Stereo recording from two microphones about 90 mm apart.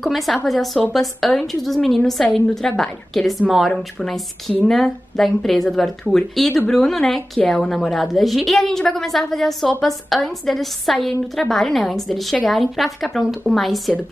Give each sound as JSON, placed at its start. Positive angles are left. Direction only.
{"t": 0.0, "sound": "a woman's voice", "side_deg": 0}